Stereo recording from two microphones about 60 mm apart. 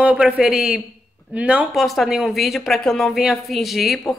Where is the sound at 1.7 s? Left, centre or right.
Centre.